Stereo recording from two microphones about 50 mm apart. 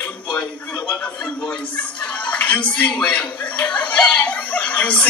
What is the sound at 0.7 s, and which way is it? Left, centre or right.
Music, left.